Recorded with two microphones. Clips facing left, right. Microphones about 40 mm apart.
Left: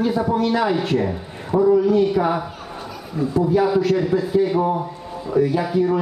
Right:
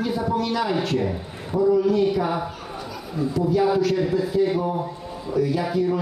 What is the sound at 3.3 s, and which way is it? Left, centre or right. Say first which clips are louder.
Speech: left 3 dB; left.